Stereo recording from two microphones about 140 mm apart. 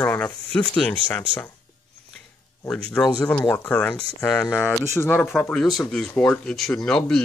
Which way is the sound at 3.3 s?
15° left (ahead or behind).